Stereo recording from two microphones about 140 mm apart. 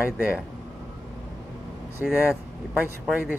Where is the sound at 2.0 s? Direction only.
Centre (ahead or behind).